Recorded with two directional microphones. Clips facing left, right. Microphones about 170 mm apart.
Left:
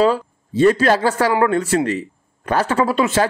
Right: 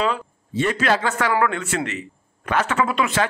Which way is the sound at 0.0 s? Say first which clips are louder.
Left 7 dB; 35° left (ahead or behind).